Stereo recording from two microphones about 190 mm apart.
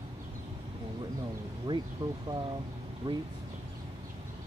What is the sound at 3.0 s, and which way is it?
Speech, 30° right (ahead or behind).